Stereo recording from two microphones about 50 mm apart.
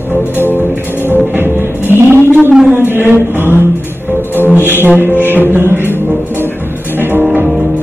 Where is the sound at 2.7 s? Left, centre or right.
Right.